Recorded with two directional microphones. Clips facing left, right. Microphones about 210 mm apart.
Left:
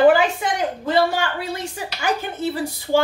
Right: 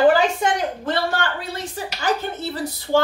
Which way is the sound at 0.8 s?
10° left (ahead or behind).